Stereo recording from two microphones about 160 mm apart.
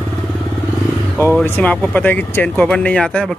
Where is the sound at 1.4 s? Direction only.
10° left (ahead or behind).